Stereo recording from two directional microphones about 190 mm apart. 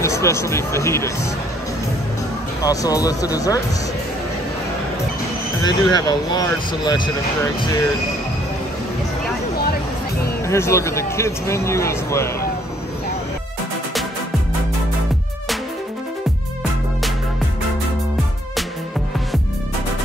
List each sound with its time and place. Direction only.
0.0 s speech: 15° left (ahead or behind)
2.6 s speech: 20° left (ahead or behind)
5.6 s speech: 20° left (ahead or behind)
10.4 s speech: 15° left (ahead or behind)